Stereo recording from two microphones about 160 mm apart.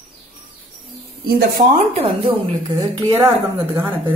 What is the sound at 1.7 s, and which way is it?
Speech, 40° right (ahead or behind).